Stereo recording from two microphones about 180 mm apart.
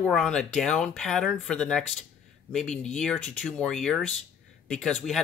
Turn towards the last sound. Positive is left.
turn(degrees=0)  # may be behind; listen again after turning